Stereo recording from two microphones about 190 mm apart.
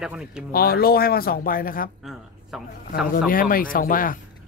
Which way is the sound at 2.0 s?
Centre (ahead or behind).